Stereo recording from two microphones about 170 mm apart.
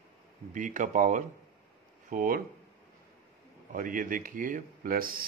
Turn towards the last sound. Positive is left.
turn(degrees=-60)  # may be behind; listen again after turning